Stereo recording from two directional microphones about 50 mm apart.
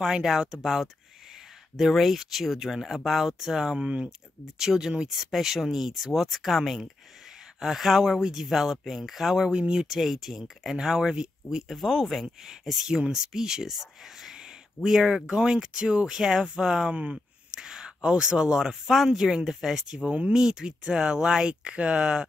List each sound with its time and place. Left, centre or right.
0.0 s speech: centre
11.7 s speech: centre
20.1 s speech: right
20.3 s speech: centre